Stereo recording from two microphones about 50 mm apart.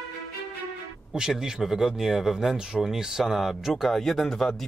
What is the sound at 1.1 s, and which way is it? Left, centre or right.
Speech, centre.